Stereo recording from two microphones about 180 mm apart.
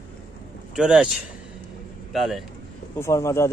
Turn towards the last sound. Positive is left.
turn(degrees=15)  # may be behind; listen again after turning